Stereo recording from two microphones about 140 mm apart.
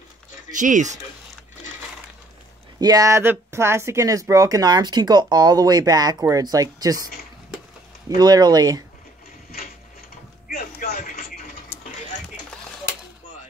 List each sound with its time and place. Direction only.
0.5 s speech: 65° right (ahead or behind)
2.8 s speech: 25° right (ahead or behind)
8.2 s speech: 30° right (ahead or behind)
10.5 s mechanisms: 90° left